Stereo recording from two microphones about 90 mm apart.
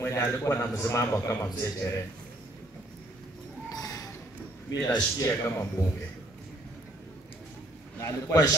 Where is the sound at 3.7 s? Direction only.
45° left (ahead or behind).